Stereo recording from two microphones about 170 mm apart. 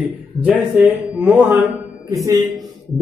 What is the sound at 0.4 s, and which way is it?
Speech, 10° right (ahead or behind).